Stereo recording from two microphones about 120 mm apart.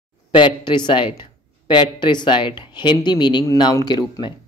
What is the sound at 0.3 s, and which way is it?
Speech, 40° left (ahead or behind).